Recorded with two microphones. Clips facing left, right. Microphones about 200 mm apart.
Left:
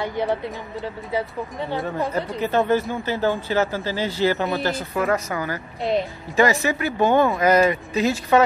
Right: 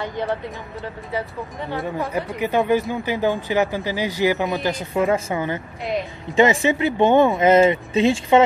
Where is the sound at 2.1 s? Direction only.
10° right (ahead or behind).